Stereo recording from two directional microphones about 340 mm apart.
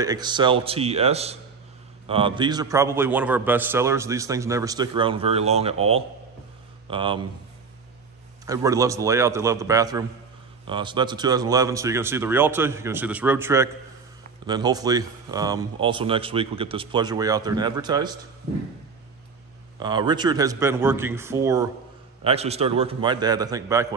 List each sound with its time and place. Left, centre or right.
0.0 s a man's voice: centre
8.5 s a man's voice: centre
19.8 s a man's voice: centre